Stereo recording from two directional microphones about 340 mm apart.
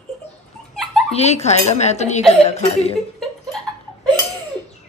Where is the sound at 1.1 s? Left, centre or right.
Centre.